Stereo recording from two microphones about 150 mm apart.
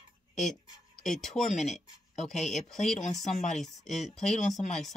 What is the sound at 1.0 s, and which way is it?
Speech, 5° left (ahead or behind).